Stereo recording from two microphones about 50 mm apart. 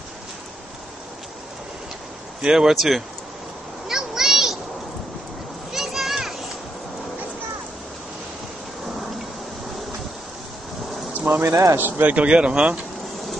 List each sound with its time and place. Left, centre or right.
2.4 s speech: centre
3.8 s a sound: centre
5.7 s children playing: centre
11.1 s a sound: right
11.4 s a man's voice: right
11.7 s speech: right
12.1 s speech: right